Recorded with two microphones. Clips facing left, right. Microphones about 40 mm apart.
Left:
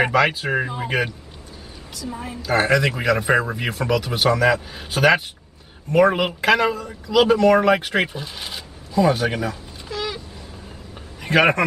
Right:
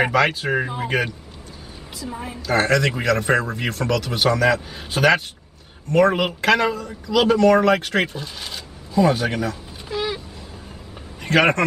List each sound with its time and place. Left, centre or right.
0.0 s a woman's voice: centre
2.4 s a man's voice: centre
9.8 s a sound: centre
11.2 s a man's voice: centre